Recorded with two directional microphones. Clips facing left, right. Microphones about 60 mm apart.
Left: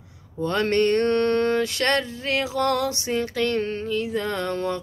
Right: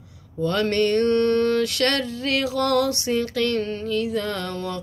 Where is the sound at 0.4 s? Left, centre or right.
Left.